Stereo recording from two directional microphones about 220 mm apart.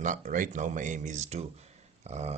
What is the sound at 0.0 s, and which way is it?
Speech, 35° right (ahead or behind).